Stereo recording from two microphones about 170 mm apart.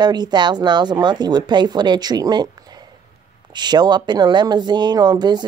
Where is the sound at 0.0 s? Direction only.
25° right (ahead or behind).